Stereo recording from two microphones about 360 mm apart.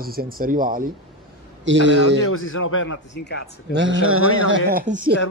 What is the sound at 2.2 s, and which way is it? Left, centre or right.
Speech, left.